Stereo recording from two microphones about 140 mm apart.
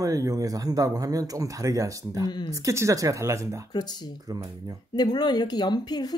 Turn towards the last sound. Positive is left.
turn(degrees=30)  # may be behind; listen again after turning